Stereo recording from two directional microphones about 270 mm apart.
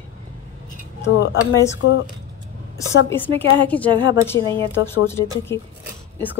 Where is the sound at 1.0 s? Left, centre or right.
Left.